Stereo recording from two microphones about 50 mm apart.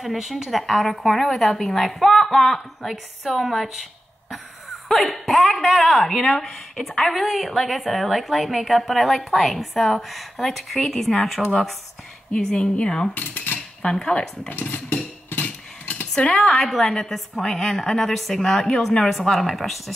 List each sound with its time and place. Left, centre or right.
0.0 s a woman's voice: centre
4.8 s a woman's voice: centre
12.4 s speech: centre
13.1 s cutlery: left
13.8 s speech: centre
14.5 s cutlery: left
15.2 s dishes: left
16.3 s a woman's voice: centre